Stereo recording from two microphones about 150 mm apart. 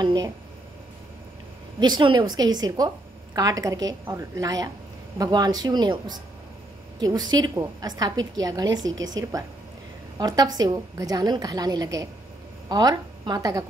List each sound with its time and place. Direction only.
0.0 s a woman's voice: 30° right (ahead or behind)
1.8 s a woman's voice: 30° right (ahead or behind)
7.0 s a woman's voice: 25° right (ahead or behind)